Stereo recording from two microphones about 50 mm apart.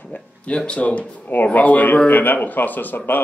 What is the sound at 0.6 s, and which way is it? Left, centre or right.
A man's voice, left.